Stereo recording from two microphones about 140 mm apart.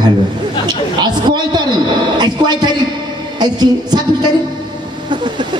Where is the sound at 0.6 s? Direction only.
30° right (ahead or behind).